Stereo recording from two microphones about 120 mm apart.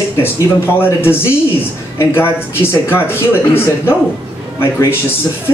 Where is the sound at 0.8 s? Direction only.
20° left (ahead or behind).